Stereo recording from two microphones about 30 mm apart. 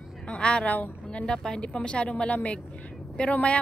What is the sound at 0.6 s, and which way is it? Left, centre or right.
Speech, left.